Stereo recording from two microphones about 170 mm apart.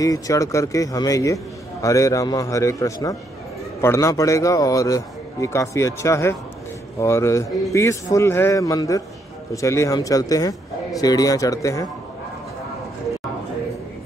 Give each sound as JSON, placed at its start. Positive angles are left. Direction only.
{"t": 0.0, "sound": "a man's voice", "side_deg": 20}